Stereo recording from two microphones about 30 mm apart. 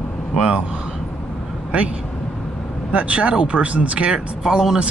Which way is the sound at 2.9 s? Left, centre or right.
Right.